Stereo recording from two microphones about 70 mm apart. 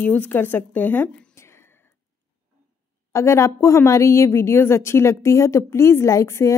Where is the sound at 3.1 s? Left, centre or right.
Left.